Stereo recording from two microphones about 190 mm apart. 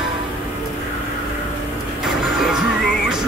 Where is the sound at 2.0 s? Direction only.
Centre (ahead or behind).